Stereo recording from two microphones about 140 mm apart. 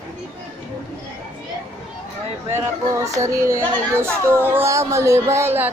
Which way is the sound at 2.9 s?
20° right (ahead or behind).